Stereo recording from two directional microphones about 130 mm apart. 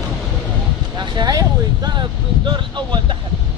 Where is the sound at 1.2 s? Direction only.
30° right (ahead or behind).